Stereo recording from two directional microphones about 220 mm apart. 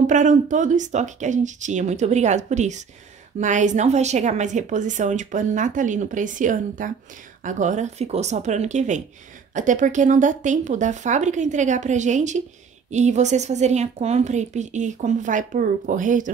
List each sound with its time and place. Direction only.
0.0 s speech: 35° right (ahead or behind)